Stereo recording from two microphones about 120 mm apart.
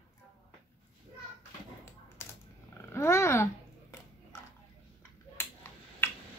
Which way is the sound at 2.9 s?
20° left (ahead or behind).